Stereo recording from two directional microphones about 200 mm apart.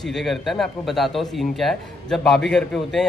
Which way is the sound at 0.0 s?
Centre (ahead or behind).